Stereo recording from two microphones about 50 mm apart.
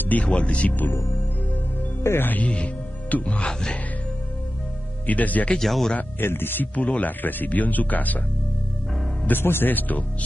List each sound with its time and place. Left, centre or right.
0.0 s speech: left
2.2 s speech: left
5.0 s speech: left
5.6 s speech: centre
5.9 s speech: left
9.2 s speech: left